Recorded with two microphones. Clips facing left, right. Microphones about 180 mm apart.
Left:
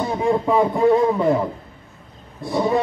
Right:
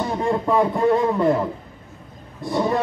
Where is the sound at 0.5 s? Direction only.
5° left (ahead or behind).